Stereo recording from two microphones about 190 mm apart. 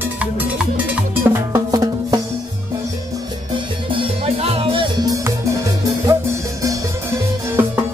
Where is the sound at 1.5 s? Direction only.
20° right (ahead or behind).